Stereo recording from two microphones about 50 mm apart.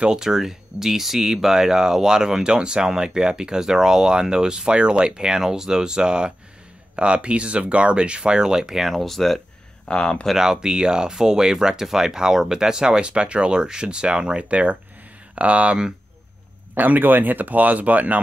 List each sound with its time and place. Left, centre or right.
0.0 s speech: centre
9.8 s speech: centre
10.3 s speech: centre
16.7 s speech: right